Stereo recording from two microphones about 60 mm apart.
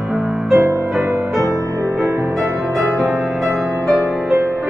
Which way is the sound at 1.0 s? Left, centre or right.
Right.